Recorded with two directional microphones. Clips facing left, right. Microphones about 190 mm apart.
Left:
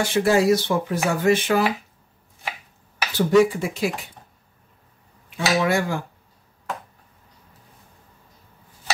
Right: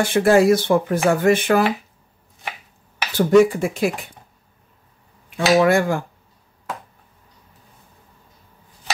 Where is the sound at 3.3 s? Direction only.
50° right (ahead or behind).